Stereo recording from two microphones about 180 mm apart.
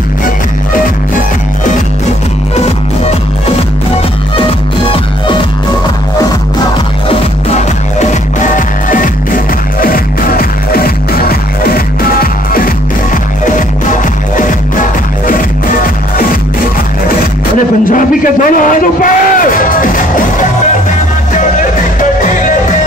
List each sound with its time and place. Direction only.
2.5 s music: 35° left (ahead or behind)
7.1 s music: 40° left (ahead or behind)
15.2 s music: 50° left (ahead or behind)
17.8 s a sound: 50° left (ahead or behind)